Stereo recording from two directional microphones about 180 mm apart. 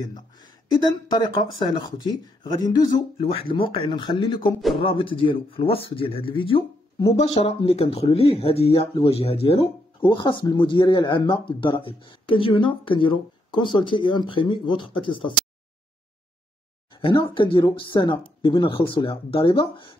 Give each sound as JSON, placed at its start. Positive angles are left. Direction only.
{"t": 0.0, "sound": "speech", "side_deg": 20}
{"t": 16.9, "sound": "speech", "side_deg": 25}